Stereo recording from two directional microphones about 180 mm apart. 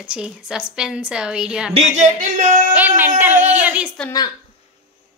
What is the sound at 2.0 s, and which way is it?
Music, 45° right (ahead or behind).